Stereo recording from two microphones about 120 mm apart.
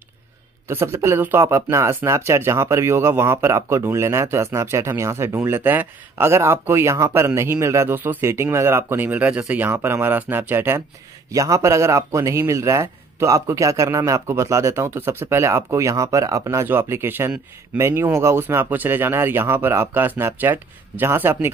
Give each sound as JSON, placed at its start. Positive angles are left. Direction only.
{"t": 0.7, "sound": "speech", "side_deg": -20}